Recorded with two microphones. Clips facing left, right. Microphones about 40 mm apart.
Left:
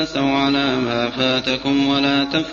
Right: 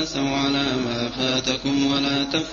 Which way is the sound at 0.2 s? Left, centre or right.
Left.